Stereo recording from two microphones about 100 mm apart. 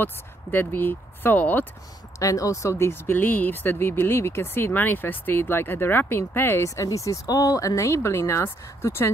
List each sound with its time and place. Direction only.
0.0 s speech: 20° left (ahead or behind)
2.1 s speech: 35° left (ahead or behind)